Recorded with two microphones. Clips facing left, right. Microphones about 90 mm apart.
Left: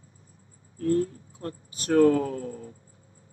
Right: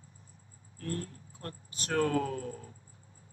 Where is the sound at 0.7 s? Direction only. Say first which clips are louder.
Left 13 dB; 25° left (ahead or behind).